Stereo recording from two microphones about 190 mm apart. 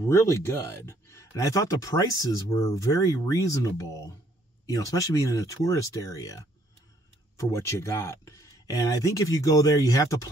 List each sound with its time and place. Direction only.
0.1 s speech: 15° left (ahead or behind)